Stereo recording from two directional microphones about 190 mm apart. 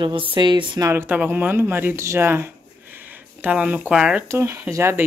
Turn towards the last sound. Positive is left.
turn(degrees=-15)  # may be behind; listen again after turning